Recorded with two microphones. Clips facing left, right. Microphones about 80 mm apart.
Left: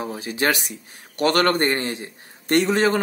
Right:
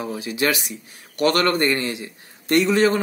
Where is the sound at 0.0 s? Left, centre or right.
Left.